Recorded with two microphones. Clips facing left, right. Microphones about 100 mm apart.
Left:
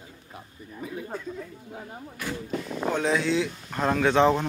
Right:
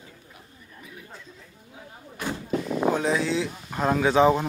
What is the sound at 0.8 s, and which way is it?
Chatter, 50° left (ahead or behind).